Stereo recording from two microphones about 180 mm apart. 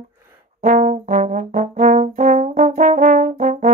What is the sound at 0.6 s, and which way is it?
Brass instrument, 50° right (ahead or behind).